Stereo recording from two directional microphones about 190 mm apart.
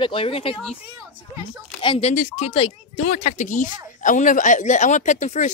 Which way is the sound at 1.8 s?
30° left (ahead or behind).